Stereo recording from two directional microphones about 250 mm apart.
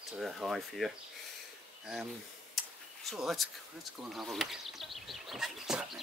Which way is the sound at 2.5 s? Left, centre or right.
Centre.